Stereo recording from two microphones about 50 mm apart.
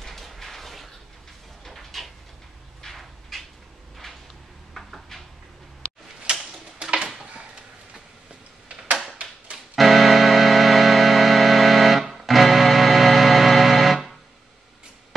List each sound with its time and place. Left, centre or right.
0.0 s a sound: centre
6.2 s tick-tock: centre
9.8 s music: centre